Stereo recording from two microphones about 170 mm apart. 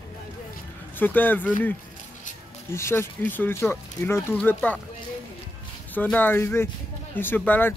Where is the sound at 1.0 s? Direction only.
10° left (ahead or behind).